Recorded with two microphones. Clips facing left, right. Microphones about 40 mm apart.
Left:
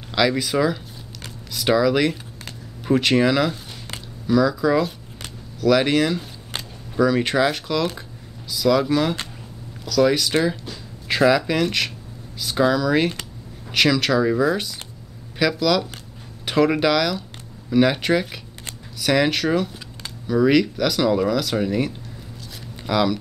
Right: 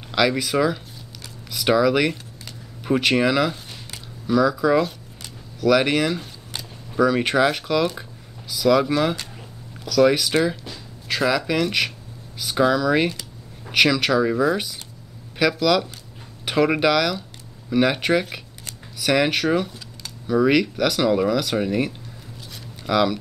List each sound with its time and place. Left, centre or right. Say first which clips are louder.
0.1 s speech: even; centre